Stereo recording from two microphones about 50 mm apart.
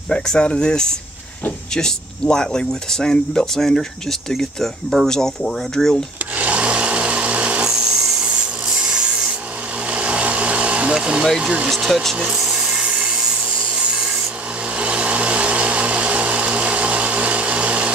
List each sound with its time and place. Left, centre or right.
0.1 s speech: centre
6.3 s wood: right
7.6 s rub: centre
8.3 s rub: right
9.8 s vehicle: right
11.3 s speech: right
11.9 s speech: centre
12.4 s wood: centre
14.8 s engine: right